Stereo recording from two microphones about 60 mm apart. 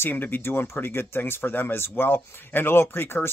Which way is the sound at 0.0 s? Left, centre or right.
Left.